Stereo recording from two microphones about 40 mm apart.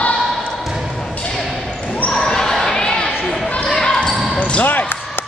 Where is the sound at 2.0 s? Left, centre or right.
Centre.